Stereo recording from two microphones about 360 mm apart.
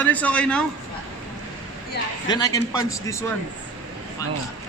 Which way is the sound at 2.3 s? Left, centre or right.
Centre.